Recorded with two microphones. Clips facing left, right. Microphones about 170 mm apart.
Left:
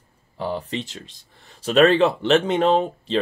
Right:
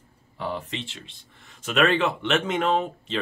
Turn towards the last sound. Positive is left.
turn(degrees=35)  # may be behind; listen again after turning